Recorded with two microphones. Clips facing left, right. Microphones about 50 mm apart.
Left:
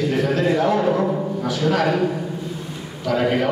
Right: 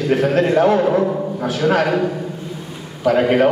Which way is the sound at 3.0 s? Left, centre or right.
Right.